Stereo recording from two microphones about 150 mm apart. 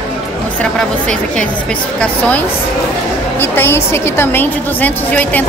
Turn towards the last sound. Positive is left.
turn(degrees=10)  # may be behind; listen again after turning